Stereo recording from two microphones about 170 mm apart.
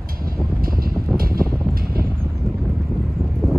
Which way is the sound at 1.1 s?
60° right (ahead or behind).